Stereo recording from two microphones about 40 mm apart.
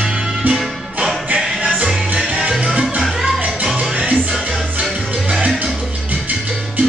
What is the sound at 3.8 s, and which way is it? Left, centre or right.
Music, right.